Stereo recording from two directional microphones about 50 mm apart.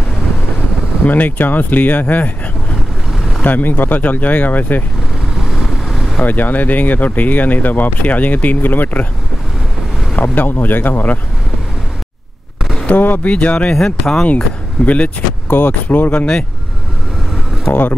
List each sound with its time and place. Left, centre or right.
1.0 s speech: left
3.4 s speech: left
5.4 s vehicle: centre
6.1 s speech: left
10.1 s speech: left
12.8 s speech: left
13.7 s speech: centre
15.5 s speech: left
17.6 s speech: left